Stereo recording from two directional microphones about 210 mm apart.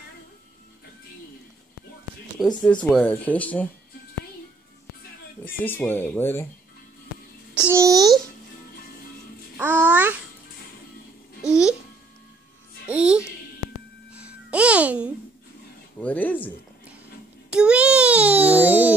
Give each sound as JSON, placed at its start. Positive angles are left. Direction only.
{"t": 2.3, "sound": "speech", "side_deg": 5}
{"t": 5.6, "sound": "speech", "side_deg": 10}
{"t": 7.7, "sound": "a child's voice", "side_deg": -15}
{"t": 9.6, "sound": "babbling", "side_deg": -10}
{"t": 12.8, "sound": "speech", "side_deg": -5}
{"t": 14.1, "sound": "music", "side_deg": -5}
{"t": 16.0, "sound": "speech", "side_deg": 10}
{"t": 17.5, "sound": "baby cry", "side_deg": -5}